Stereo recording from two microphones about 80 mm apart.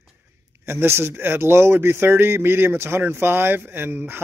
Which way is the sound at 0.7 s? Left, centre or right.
Right.